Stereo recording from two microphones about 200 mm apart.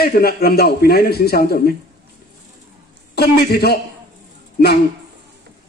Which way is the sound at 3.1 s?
50° left (ahead or behind).